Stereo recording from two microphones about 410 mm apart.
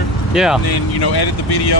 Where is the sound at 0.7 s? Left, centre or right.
Left.